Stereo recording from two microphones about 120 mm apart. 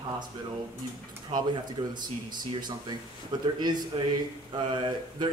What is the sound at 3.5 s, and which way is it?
Speech, 35° right (ahead or behind).